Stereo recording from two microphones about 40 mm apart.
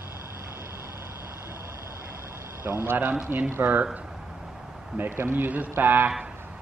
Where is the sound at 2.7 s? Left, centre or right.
Right.